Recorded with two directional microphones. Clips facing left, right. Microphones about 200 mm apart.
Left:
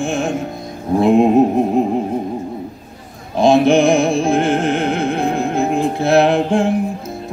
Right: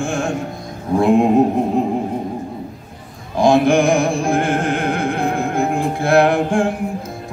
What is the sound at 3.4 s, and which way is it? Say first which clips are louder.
Music: left 2 dB; 20° left (ahead or behind).